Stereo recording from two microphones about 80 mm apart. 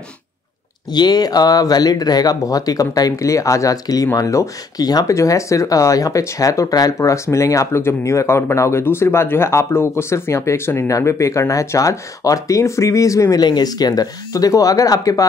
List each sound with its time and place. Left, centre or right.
0.9 s speech: left
5.1 s speech: left
13.4 s speech: left